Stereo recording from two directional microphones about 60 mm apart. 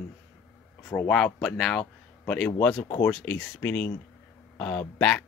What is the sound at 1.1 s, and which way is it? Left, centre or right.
Speech, centre.